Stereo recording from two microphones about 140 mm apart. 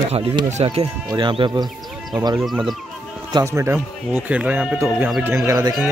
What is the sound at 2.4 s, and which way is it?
Speech, centre (ahead or behind).